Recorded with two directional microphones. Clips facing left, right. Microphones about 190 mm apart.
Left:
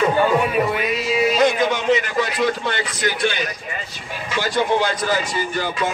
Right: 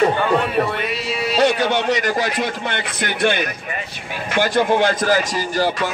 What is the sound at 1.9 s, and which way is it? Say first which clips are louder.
Speech: left 1 dB; 40° right (ahead or behind).